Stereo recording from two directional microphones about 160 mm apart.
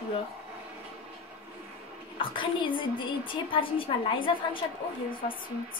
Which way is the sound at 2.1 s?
30° left (ahead or behind).